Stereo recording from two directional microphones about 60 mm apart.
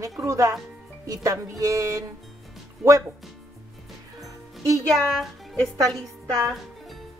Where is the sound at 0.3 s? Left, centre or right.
Right.